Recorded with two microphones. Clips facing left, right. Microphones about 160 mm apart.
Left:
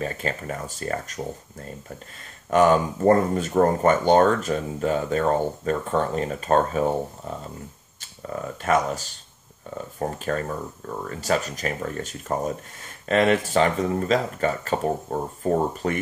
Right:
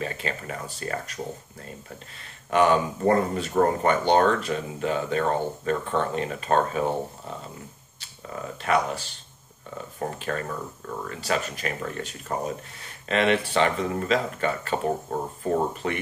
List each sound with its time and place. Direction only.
0.0 s speech: 40° left (ahead or behind)
8.6 s speech: 45° left (ahead or behind)